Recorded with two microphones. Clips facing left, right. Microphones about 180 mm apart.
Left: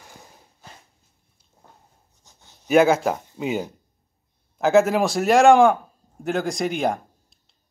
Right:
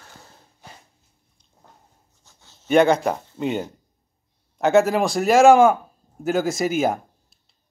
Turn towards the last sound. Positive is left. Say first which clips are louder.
# right 1 dB
turn(degrees=-5)  # may be behind; listen again after turning